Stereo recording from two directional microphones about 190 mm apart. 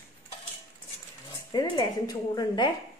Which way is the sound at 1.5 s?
20° left (ahead or behind).